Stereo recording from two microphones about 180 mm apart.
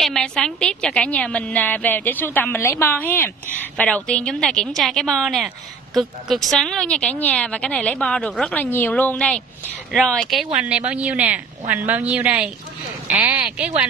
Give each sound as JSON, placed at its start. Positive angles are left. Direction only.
{"t": 0.0, "sound": "a woman's voice", "side_deg": 5}